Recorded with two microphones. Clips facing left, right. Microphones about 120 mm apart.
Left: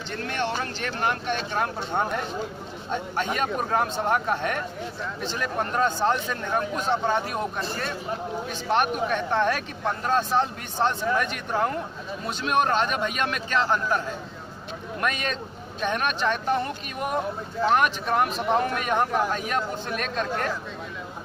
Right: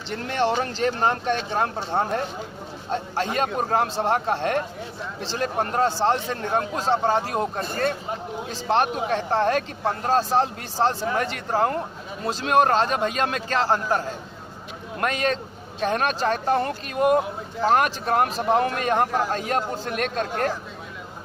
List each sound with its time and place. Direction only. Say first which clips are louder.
0.1 s speech: right 5 dB; 25° right (ahead or behind)
7.6 s speech: right 6 dB; 50° right (ahead or behind)
8.5 s speech: right 2 dB; 30° right (ahead or behind)